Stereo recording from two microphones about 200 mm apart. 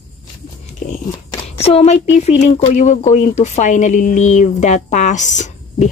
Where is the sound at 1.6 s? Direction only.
30° left (ahead or behind).